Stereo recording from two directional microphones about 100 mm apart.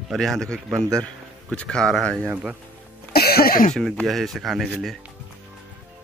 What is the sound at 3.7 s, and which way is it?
Speech, centre (ahead or behind).